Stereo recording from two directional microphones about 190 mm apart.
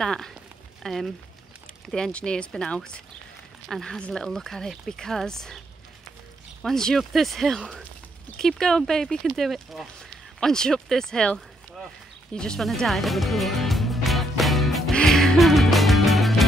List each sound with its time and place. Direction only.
0.0 s speech: 5° left (ahead or behind)
6.6 s speech: 5° left (ahead or behind)
10.4 s a sound: 5° left (ahead or behind)